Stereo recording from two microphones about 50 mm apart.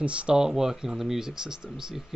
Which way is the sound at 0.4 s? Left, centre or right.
Centre.